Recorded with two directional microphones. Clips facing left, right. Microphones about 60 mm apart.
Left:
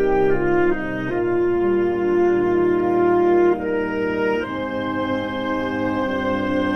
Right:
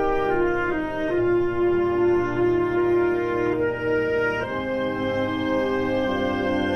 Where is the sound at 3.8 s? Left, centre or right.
Left.